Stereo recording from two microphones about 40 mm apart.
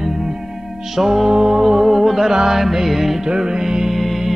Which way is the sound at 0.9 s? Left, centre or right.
Centre.